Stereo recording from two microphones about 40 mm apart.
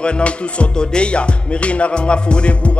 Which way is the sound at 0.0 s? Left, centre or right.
Left.